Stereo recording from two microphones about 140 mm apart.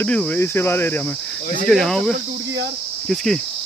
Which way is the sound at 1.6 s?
5° left (ahead or behind).